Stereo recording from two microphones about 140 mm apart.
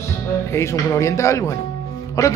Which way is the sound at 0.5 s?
20° left (ahead or behind).